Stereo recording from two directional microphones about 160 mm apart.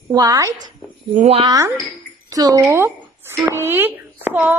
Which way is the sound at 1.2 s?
40° right (ahead or behind).